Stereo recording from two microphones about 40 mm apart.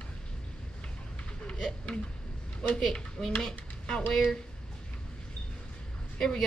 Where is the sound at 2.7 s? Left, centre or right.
Centre.